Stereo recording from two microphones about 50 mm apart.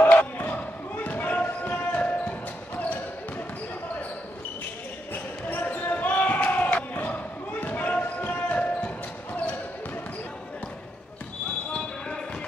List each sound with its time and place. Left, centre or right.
0.4 s basketball bounce: left
5.1 s basketball bounce: left